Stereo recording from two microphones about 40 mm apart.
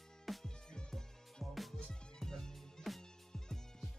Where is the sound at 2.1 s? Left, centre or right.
Centre.